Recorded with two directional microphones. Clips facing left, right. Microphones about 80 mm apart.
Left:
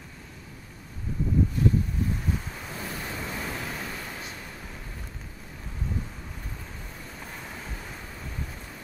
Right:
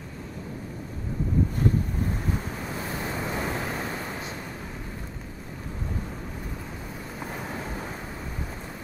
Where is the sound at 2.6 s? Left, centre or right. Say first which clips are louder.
Right 4 dB; centre.